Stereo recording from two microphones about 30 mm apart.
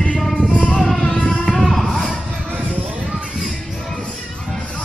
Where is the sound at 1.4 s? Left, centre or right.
Centre.